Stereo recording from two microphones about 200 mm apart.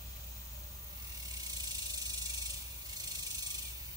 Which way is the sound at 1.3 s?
20° right (ahead or behind).